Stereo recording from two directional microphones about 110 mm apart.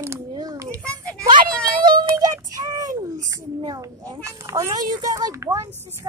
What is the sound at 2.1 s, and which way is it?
A child's voice, 35° right (ahead or behind).